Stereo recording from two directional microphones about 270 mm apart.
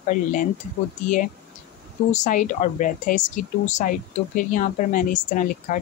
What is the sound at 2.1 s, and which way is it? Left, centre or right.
Speech, left.